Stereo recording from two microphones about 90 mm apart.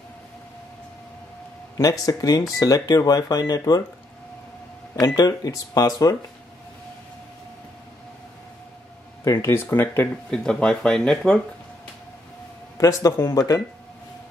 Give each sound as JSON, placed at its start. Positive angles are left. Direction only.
{"t": 1.8, "sound": "speech", "side_deg": 40}
{"t": 5.0, "sound": "speech", "side_deg": 45}
{"t": 9.2, "sound": "speech", "side_deg": 35}
{"t": 10.3, "sound": "speech", "side_deg": 10}
{"t": 12.7, "sound": "a man's voice", "side_deg": 40}